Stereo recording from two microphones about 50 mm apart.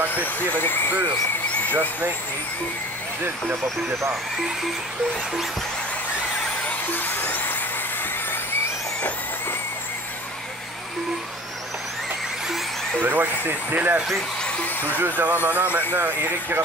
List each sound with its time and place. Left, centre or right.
0.1 s speech: left
1.5 s vehicle: left
3.6 s speech: right
7.2 s vehicle: left
13.0 s speech: right
15.0 s speech: right
15.9 s speech: right